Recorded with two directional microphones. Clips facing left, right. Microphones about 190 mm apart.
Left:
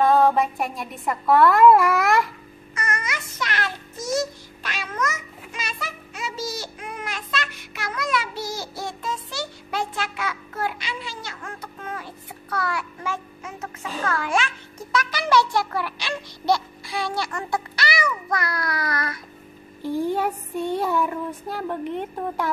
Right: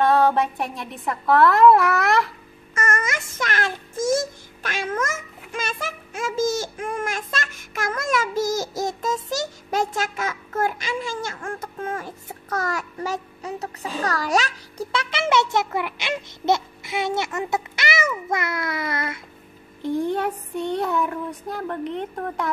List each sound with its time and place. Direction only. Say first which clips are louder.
0.0 s child singing: even; centre (ahead or behind)
2.7 s child singing: right 5 dB; 50° right (ahead or behind); by 19.2 s 25° right (ahead or behind)
19.8 s child singing: even; 5° left (ahead or behind)